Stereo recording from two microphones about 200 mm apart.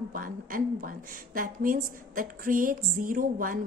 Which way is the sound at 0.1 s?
45° right (ahead or behind).